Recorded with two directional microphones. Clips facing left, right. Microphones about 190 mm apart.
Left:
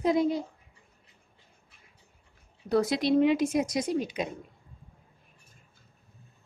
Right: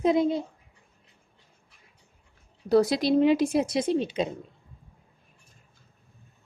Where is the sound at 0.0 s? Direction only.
25° right (ahead or behind).